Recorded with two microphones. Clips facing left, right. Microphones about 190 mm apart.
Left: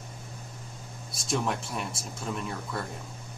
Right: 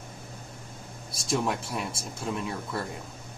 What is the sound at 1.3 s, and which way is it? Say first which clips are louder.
A man's voice: right 2 dB; centre (ahead or behind).